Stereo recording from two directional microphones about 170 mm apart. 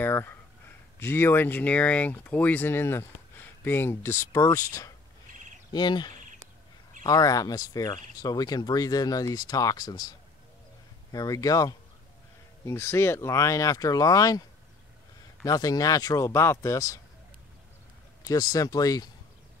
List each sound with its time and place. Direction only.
0.0 s a sound: 10° left (ahead or behind)
0.9 s speech: 15° left (ahead or behind)
5.7 s speech: 25° left (ahead or behind)
15.4 s speech: 20° left (ahead or behind)
18.2 s speech: 20° left (ahead or behind)